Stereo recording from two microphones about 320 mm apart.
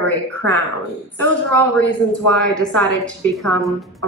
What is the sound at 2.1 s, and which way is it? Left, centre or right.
A woman's voice, centre.